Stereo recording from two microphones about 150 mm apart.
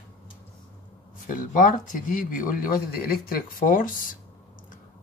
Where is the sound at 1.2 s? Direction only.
60° left (ahead or behind).